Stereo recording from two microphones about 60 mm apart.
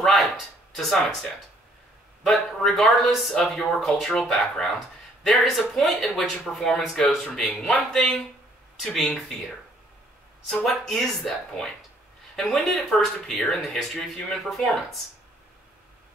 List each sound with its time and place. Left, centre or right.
0.0 s a sound: centre
0.7 s speech: centre
2.2 s speech: centre
10.5 s speech: centre